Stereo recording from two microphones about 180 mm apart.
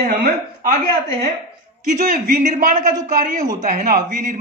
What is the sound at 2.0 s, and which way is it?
A man's voice, 50° right (ahead or behind).